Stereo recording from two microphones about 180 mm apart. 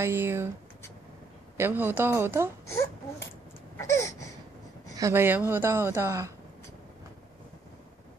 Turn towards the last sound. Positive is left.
turn(degrees=-15)  # may be behind; listen again after turning